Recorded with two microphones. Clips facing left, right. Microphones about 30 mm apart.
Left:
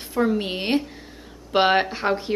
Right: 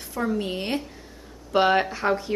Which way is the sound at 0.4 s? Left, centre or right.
Left.